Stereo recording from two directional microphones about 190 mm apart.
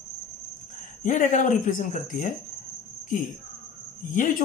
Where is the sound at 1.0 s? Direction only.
40° left (ahead or behind).